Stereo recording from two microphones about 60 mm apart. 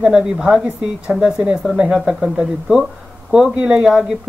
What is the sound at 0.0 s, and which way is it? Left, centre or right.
Speech, centre.